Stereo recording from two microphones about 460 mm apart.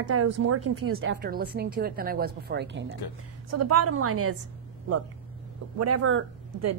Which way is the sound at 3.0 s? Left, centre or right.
Left.